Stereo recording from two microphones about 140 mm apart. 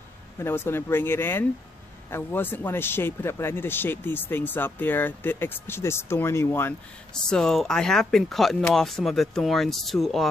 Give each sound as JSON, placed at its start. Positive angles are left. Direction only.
{"t": 0.4, "sound": "speech", "side_deg": 15}
{"t": 7.2, "sound": "speech", "side_deg": 5}